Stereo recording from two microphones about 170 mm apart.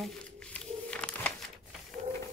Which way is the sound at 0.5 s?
5° left (ahead or behind).